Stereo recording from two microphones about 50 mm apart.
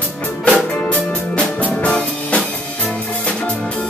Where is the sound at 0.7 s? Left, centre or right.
Left.